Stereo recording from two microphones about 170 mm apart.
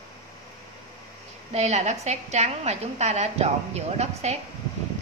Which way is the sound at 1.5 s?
40° right (ahead or behind).